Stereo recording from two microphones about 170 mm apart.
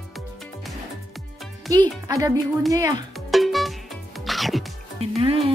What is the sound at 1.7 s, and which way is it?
Speech, 20° right (ahead or behind).